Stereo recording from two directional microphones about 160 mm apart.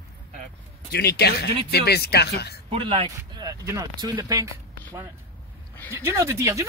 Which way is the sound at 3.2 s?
20° right (ahead or behind).